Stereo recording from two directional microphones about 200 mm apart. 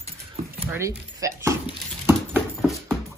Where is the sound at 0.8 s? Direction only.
15° right (ahead or behind).